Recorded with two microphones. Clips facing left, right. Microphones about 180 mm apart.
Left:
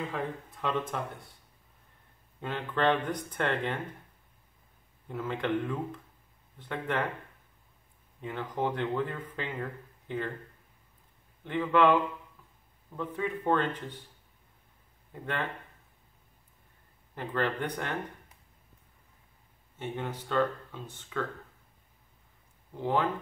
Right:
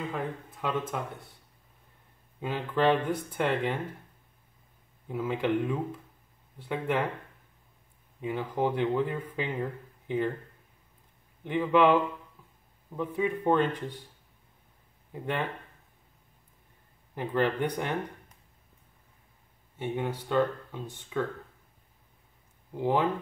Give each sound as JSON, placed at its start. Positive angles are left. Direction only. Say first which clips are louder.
{"t": 0.1, "sound": "speech", "louder": "right 1 dB", "side_deg": 0}
{"t": 2.4, "sound": "speech", "louder": "right 2 dB", "side_deg": -10}
{"t": 5.0, "sound": "speech", "louder": "right 3 dB", "side_deg": -10}
{"t": 8.2, "sound": "speech", "louder": "right 3 dB", "side_deg": -10}
{"t": 11.4, "sound": "speech", "louder": "right 2 dB", "side_deg": -15}
{"t": 15.1, "sound": "speech", "louder": "right 3 dB", "side_deg": -15}
{"t": 17.1, "sound": "speech", "louder": "right 4 dB", "side_deg": -15}
{"t": 19.8, "sound": "speech", "louder": "right 4 dB", "side_deg": -10}
{"t": 22.8, "sound": "speech", "louder": "right 2 dB", "side_deg": -15}